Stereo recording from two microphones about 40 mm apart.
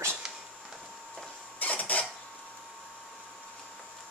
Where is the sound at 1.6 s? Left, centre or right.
Left.